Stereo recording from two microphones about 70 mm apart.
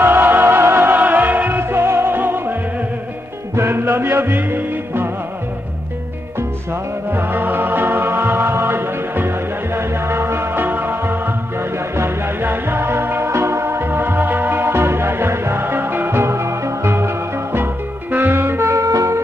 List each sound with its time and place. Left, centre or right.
0.0 s music: right
3.5 s music: right
6.7 s music: right